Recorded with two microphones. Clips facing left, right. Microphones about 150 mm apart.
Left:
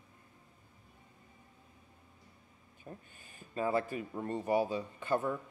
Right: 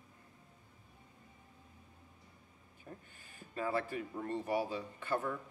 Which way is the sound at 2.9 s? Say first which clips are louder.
Left 3 dB; 25° left (ahead or behind).